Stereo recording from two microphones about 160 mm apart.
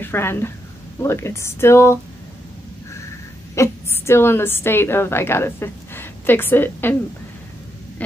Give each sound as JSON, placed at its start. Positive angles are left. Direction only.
{"t": 0.0, "sound": "a woman's voice", "side_deg": 15}
{"t": 3.5, "sound": "a woman's voice", "side_deg": 15}